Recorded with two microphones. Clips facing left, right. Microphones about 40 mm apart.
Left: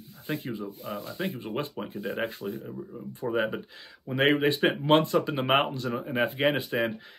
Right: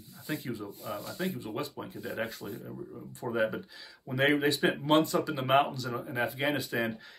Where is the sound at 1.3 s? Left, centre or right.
Left.